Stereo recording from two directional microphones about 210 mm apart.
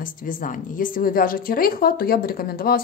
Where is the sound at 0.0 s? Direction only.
40° left (ahead or behind).